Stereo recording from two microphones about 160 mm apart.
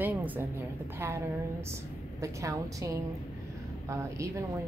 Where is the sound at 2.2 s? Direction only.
20° right (ahead or behind).